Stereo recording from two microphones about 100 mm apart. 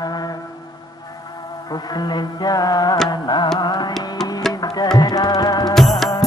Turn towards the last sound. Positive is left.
turn(degrees=0)  # may be behind; listen again after turning